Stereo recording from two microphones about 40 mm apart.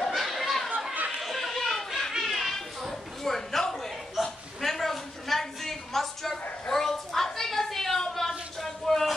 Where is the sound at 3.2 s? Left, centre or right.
Centre.